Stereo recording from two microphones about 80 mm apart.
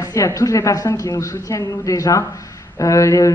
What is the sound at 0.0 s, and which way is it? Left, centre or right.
Speech, left.